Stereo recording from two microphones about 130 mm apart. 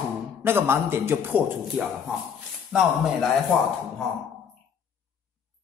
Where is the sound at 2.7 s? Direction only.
5° right (ahead or behind).